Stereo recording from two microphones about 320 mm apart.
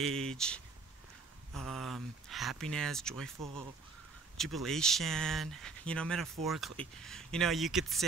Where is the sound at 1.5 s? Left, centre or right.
Centre.